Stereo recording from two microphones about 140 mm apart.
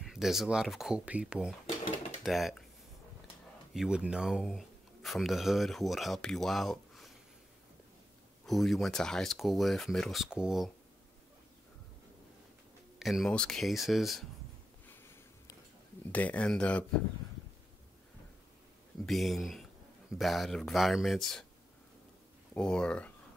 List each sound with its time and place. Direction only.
0.0 s speech: 5° right (ahead or behind)
3.7 s speech: 5° right (ahead or behind)
8.5 s speech: centre (ahead or behind)
13.0 s speech: centre (ahead or behind)
14.9 s a sound: 15° left (ahead or behind)
16.1 s speech: 10° left (ahead or behind)
19.0 s speech: centre (ahead or behind)
22.5 s speech: 5° left (ahead or behind)